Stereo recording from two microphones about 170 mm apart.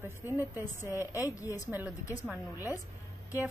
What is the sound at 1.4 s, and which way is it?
Speech, 20° left (ahead or behind).